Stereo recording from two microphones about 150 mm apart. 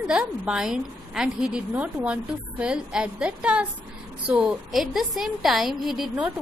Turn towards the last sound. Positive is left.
turn(degrees=0)  # may be behind; listen again after turning